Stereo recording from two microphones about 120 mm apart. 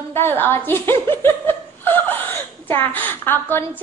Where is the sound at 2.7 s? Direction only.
15° left (ahead or behind).